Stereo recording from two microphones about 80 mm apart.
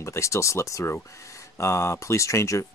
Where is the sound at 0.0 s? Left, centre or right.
Left.